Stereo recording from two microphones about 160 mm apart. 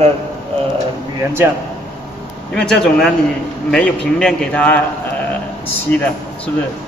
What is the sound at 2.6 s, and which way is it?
A man's voice, 5° left (ahead or behind).